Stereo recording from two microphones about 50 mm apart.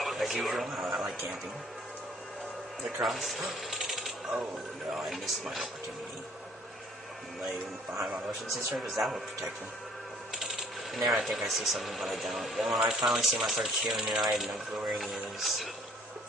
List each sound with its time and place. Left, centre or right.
0.0 s speech: centre
3.0 s mechanisms: centre
4.9 s speech: centre
8.7 s speech: centre